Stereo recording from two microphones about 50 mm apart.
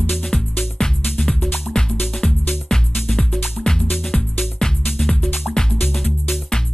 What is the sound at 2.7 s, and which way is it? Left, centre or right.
Music, centre.